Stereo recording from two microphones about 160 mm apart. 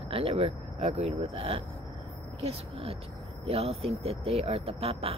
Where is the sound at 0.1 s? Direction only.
35° right (ahead or behind).